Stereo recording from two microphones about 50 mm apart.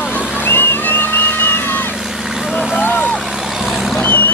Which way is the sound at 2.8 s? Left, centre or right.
Left.